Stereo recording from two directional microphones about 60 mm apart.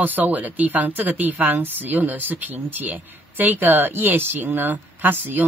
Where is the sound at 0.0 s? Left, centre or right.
Right.